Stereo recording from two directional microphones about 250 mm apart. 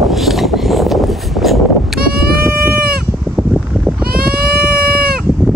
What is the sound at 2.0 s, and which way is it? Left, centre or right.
Vehicle, right.